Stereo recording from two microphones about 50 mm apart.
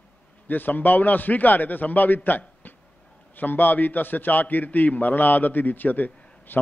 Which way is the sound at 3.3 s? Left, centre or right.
Left.